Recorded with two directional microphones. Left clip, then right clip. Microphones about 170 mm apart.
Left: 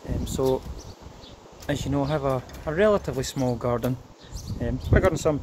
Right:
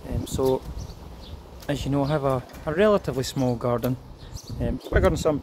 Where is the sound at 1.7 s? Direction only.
10° right (ahead or behind).